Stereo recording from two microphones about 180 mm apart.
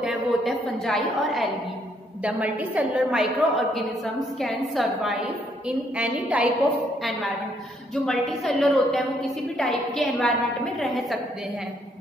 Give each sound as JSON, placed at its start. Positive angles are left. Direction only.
{"t": 0.0, "sound": "a woman's voice", "side_deg": -5}